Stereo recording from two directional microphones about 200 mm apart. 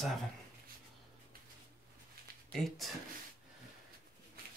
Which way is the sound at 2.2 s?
50° right (ahead or behind).